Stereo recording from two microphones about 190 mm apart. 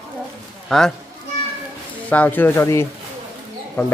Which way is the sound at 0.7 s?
Centre (ahead or behind).